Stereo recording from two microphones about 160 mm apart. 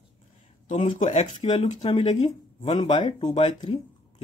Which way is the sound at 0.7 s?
35° left (ahead or behind).